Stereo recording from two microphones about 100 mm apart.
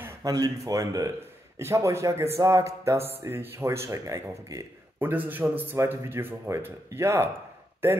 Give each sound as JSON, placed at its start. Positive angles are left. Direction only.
{"t": 0.2, "sound": "speech", "side_deg": -35}
{"t": 4.9, "sound": "speech", "side_deg": -20}